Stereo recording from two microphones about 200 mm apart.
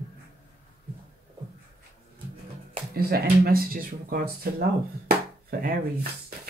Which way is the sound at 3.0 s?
50° right (ahead or behind).